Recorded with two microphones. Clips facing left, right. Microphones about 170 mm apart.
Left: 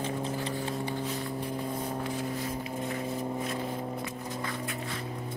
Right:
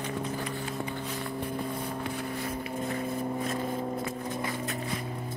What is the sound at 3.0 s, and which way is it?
Vehicle, 50° right (ahead or behind).